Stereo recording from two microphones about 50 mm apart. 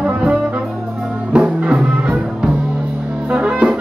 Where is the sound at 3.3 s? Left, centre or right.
Right.